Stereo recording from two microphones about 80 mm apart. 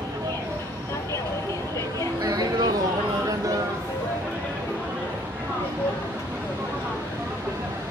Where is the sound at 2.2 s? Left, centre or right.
Right.